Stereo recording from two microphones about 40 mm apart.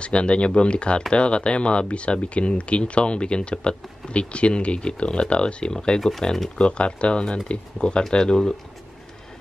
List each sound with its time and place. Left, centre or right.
0.0 s speech: left; by 6.5 s centre
6.6 s speech: left